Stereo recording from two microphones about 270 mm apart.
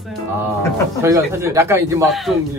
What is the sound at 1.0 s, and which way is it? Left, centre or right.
Music, centre.